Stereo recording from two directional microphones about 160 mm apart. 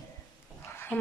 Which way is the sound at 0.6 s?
15° left (ahead or behind).